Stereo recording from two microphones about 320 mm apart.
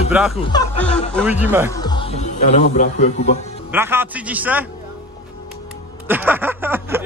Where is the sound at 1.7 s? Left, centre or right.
Centre.